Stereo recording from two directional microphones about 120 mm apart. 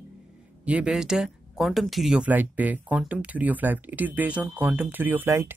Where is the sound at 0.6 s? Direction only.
10° right (ahead or behind).